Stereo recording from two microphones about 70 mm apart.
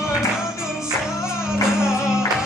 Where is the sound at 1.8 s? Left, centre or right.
Centre.